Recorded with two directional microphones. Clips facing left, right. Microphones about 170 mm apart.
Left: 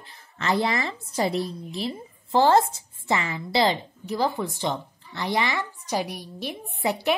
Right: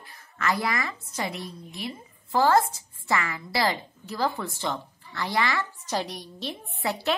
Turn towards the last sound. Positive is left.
turn(degrees=15)  # may be behind; listen again after turning